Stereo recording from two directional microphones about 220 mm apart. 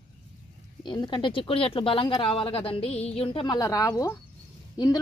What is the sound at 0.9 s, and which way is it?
A woman's voice, 20° left (ahead or behind).